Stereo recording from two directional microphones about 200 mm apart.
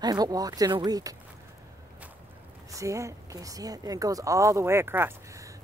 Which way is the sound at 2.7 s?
15° right (ahead or behind).